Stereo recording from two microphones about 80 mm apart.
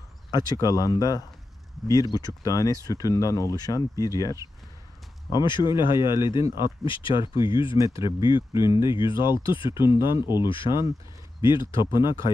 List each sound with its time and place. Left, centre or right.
0.3 s speech: left
5.3 s speech: left
5.9 s speech: right
6.8 s speech: left
7.7 s speech: right
8.0 s speech: left
9.9 s speech: right
10.5 s speech: left